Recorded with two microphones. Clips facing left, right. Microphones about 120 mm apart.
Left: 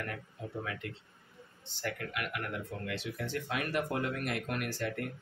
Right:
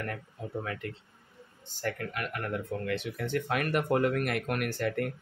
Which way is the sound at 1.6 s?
45° right (ahead or behind).